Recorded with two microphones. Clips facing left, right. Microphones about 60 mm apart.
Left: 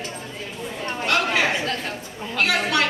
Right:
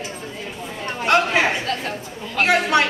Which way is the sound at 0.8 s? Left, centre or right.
Right.